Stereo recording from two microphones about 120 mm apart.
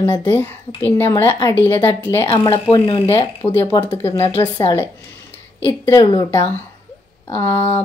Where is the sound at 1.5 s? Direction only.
20° left (ahead or behind).